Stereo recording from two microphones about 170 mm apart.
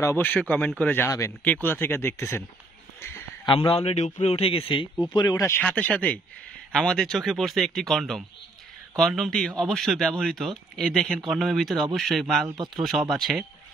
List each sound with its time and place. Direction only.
0.0 s speech: 15° left (ahead or behind)
3.4 s a man's voice: 30° left (ahead or behind)
5.6 s speech: 10° left (ahead or behind)
12.4 s speech: 25° right (ahead or behind)
13.1 s speech: centre (ahead or behind)